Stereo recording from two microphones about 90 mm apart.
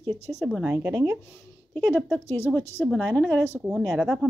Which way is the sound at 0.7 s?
25° right (ahead or behind).